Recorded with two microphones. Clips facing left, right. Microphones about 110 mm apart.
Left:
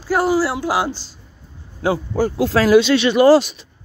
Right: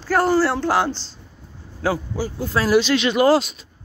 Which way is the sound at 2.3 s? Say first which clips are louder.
Left 5 dB; 90° left.